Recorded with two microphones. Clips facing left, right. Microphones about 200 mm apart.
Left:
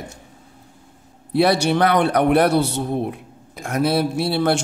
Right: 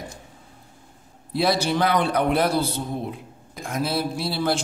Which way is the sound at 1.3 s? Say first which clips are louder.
Left 5 dB; 65° left (ahead or behind).